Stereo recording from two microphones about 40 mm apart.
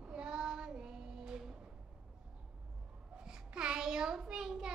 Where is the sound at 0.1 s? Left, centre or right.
Centre.